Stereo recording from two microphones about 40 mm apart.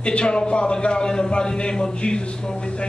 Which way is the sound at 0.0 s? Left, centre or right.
Left.